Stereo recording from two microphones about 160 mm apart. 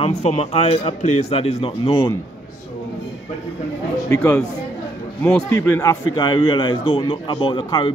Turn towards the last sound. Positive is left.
turn(degrees=30)  # may be behind; listen again after turning